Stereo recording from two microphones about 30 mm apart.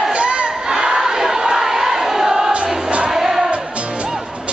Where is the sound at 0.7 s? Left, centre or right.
Right.